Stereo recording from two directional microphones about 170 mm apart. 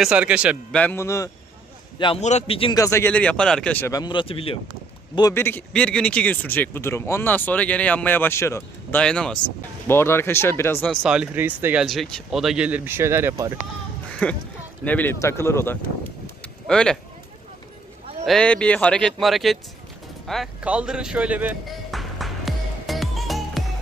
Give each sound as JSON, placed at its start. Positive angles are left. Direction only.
{"t": 0.0, "sound": "speech", "side_deg": -5}
{"t": 0.7, "sound": "a man's voice", "side_deg": 10}
{"t": 2.0, "sound": "a man's voice", "side_deg": 30}
{"t": 2.7, "sound": "a man's voice", "side_deg": 20}
{"t": 4.0, "sound": "speech", "side_deg": 30}
{"t": 5.3, "sound": "a man's voice", "side_deg": 10}
{"t": 9.0, "sound": "a man's voice", "side_deg": 5}
{"t": 10.9, "sound": "speech", "side_deg": -5}
{"t": 14.2, "sound": "a man's voice", "side_deg": 5}
{"t": 18.2, "sound": "speech", "side_deg": 5}
{"t": 20.2, "sound": "music", "side_deg": -5}